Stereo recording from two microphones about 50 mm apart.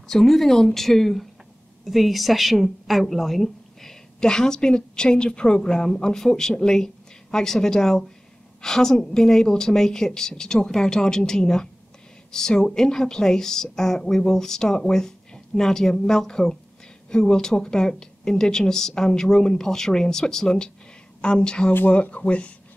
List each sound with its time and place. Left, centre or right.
0.1 s speech: centre; by 22.5 s left